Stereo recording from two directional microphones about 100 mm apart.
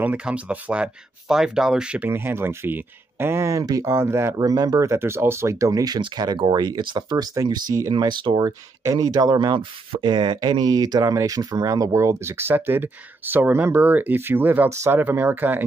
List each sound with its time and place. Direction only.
0.0 s speech: 15° right (ahead or behind)
2.0 s speech: 25° right (ahead or behind)
4.4 s speech: 40° right (ahead or behind)
8.5 s speech: 35° right (ahead or behind); by 15.6 s 20° right (ahead or behind)